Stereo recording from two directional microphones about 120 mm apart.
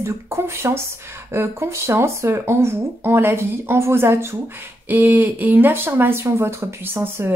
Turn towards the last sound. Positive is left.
turn(degrees=-20)  # may be behind; listen again after turning